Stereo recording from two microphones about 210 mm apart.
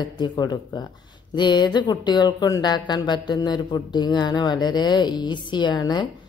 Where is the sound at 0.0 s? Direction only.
20° left (ahead or behind).